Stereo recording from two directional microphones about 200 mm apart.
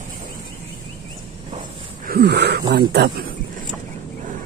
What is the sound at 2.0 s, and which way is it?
Speech, 50° right (ahead or behind).